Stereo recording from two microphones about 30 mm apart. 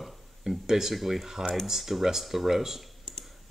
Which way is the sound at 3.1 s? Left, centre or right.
Left.